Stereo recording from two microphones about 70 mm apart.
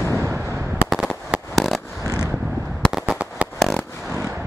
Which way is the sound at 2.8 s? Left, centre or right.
Centre.